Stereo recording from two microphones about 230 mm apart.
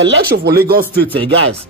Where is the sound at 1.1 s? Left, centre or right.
Right.